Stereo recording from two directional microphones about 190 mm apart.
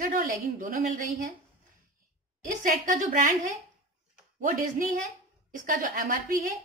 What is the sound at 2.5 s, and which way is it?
A woman's voice, 45° right (ahead or behind).